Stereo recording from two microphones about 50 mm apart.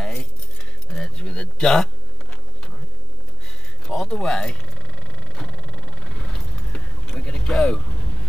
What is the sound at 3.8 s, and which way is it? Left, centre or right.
Speech, centre.